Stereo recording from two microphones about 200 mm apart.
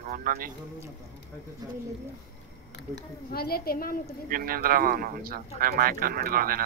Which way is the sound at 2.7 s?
55° left (ahead or behind).